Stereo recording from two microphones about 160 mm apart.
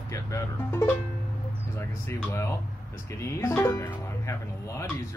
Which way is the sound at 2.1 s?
15° left (ahead or behind).